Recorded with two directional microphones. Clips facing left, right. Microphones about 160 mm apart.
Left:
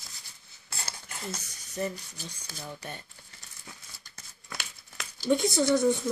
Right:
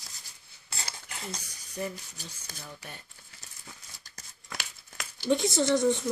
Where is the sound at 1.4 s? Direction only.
10° right (ahead or behind).